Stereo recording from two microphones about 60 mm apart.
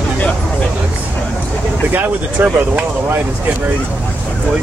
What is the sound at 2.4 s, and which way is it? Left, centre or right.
Speech, right.